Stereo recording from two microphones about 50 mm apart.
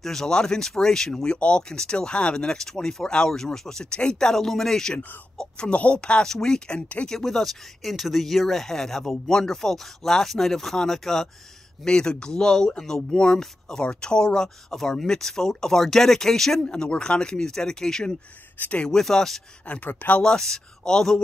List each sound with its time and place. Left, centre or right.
0.0 s speech: centre
5.4 s speech: left
6.2 s speech: centre
16.6 s speech: left
18.6 s speech: left
18.9 s speech: centre
19.6 s speech: left
20.2 s speech: centre